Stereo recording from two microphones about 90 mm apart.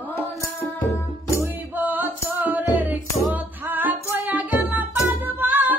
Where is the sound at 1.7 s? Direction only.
20° right (ahead or behind).